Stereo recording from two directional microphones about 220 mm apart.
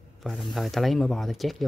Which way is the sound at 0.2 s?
Centre (ahead or behind).